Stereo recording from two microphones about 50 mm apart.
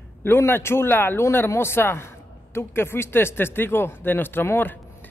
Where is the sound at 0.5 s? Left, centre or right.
Left.